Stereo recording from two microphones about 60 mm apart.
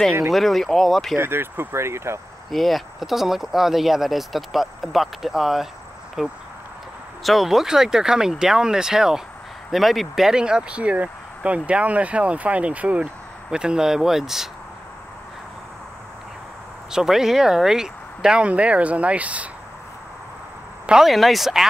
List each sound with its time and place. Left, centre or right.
0.3 s speech: centre
1.1 s speech: right
2.5 s speech: centre
16.9 s speech: centre; by 19.5 s right
21.0 s speech: centre